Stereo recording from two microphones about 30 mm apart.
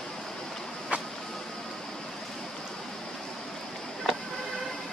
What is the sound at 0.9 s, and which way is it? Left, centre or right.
Vehicle, right.